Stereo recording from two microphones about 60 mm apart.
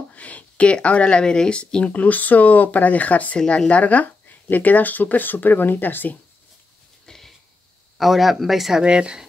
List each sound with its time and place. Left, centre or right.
0.1 s speech: left
7.1 s sniff: centre
8.0 s speech: centre
8.8 s speech: centre